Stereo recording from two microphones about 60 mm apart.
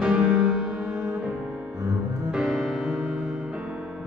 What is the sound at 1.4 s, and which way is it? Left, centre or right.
Music, centre.